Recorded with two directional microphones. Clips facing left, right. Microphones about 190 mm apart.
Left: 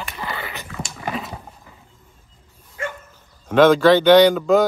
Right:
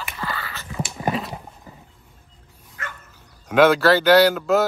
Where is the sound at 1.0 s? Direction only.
25° right (ahead or behind).